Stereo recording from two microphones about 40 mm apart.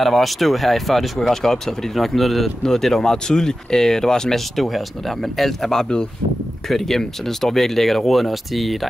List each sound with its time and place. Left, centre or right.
0.0 s speech: centre
4.6 s speech: centre